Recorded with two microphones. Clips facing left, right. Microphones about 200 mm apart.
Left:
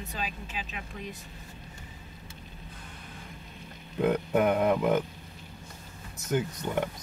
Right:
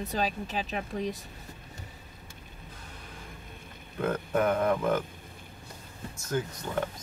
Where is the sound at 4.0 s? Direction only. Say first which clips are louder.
Left 3 dB; 15° left (ahead or behind).